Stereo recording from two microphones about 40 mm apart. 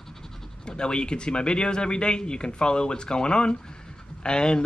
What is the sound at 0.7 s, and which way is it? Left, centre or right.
Speech, left.